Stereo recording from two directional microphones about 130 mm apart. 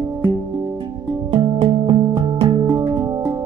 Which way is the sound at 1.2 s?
45° right (ahead or behind).